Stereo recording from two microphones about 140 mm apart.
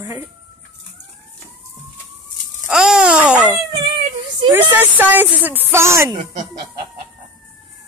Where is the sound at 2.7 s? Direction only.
5° right (ahead or behind).